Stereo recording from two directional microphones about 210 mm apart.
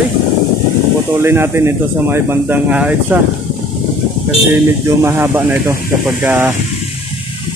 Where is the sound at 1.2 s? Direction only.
10° right (ahead or behind).